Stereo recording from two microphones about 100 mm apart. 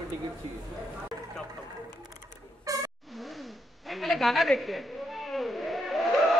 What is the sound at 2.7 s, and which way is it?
Vehicle, 35° right (ahead or behind).